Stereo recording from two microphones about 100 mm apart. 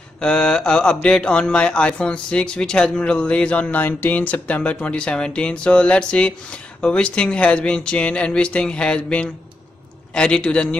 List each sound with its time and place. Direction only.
0.2 s mantra: 10° left (ahead or behind)